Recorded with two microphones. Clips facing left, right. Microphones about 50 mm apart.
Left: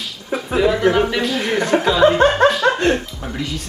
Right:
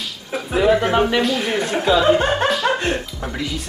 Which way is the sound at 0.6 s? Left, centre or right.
Right.